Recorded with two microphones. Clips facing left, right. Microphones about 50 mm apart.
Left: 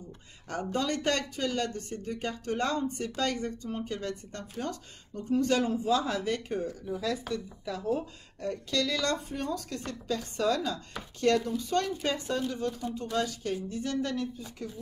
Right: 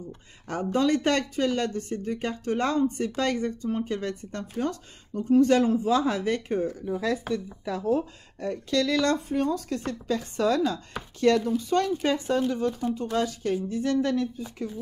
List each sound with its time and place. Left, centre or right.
0.5 s speech: right